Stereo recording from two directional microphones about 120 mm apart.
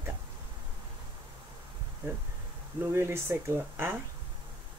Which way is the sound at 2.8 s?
20° right (ahead or behind).